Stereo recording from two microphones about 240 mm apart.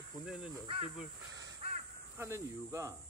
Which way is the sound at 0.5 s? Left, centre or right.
Right.